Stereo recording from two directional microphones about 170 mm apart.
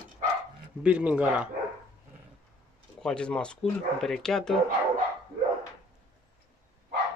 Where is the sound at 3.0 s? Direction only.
5° left (ahead or behind).